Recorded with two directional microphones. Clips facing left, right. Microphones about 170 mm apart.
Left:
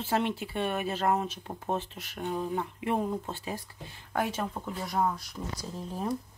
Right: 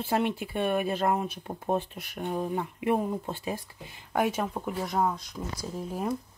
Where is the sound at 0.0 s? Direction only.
15° right (ahead or behind).